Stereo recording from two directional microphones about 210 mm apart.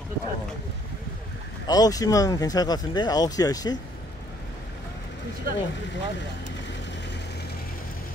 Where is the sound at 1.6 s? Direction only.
20° left (ahead or behind).